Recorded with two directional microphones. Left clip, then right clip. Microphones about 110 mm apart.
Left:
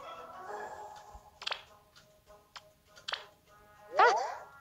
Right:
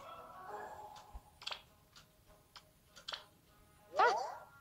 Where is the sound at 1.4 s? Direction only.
25° left (ahead or behind).